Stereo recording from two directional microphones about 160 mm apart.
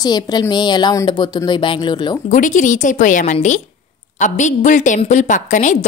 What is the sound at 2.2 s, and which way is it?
A woman's voice, 55° left (ahead or behind).